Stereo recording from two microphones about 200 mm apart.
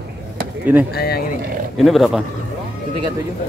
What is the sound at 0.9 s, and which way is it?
Speech, 50° left (ahead or behind).